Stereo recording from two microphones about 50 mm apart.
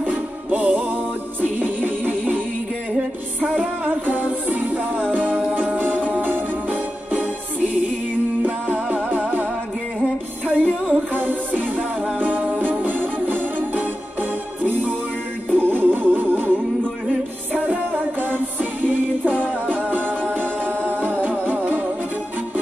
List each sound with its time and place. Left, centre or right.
0.0 s music: right
3.5 s music: right